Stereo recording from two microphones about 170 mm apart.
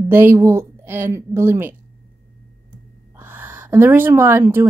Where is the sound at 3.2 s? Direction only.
10° right (ahead or behind).